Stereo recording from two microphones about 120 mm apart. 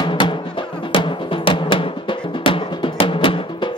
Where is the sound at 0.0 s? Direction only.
45° left (ahead or behind).